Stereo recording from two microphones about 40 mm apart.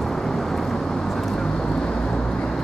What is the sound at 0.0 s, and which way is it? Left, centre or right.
Vehicle, centre.